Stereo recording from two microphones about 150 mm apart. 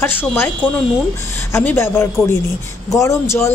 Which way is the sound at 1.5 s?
15° left (ahead or behind).